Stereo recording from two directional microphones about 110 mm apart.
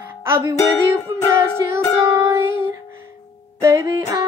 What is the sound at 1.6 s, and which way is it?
Music, 35° right (ahead or behind).